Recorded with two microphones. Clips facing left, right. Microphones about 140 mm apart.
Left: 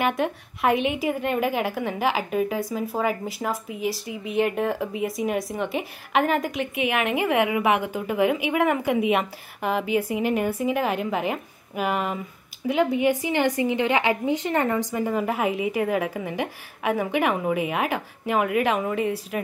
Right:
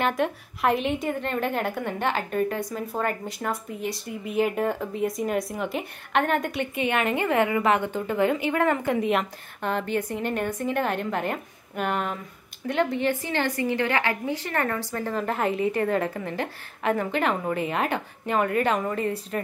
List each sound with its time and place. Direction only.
0.0 s a woman's voice: centre (ahead or behind)